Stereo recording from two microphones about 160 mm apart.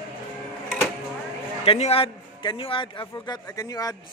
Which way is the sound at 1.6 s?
40° left (ahead or behind).